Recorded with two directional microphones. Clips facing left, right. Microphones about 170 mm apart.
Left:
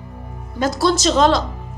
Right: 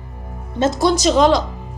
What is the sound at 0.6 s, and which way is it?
Speech, 20° right (ahead or behind).